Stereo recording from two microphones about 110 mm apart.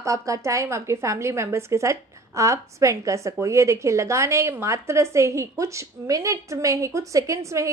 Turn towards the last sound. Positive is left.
turn(degrees=-30)  # may be behind; listen again after turning